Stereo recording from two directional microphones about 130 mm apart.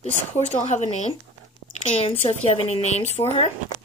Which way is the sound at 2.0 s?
50° left (ahead or behind).